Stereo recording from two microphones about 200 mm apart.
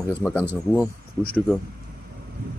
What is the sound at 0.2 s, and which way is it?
Speech, 5° left (ahead or behind).